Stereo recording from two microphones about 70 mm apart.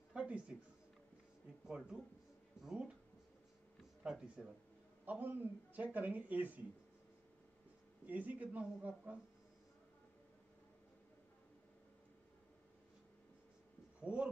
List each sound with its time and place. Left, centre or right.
0.1 s a sound: centre
1.8 s speech: centre
4.0 s speech: centre
5.0 s speech: right
8.1 s speech: right
14.0 s speech: centre